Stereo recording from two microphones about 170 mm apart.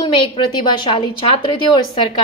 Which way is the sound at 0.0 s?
30° left (ahead or behind).